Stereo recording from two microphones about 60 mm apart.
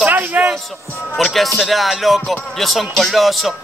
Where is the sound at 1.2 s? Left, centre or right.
Centre.